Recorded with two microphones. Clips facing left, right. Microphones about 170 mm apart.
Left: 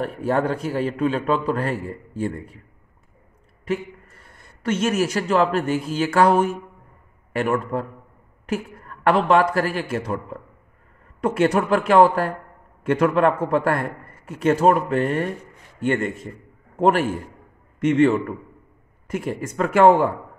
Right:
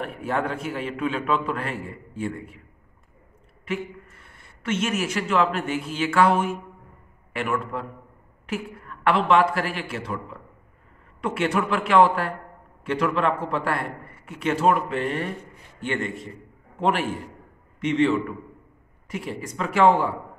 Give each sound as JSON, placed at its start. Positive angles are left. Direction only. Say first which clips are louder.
{"t": 0.0, "sound": "a man's voice", "louder": "left 5 dB", "side_deg": 40}
{"t": 3.6, "sound": "a man's voice", "louder": "left 4 dB", "side_deg": 40}